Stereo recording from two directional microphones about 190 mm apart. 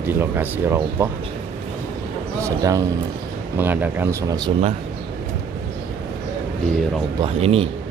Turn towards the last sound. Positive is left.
turn(degrees=-30)  # may be behind; listen again after turning